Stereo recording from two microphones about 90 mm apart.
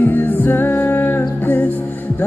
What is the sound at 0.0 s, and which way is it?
Music, 20° left (ahead or behind).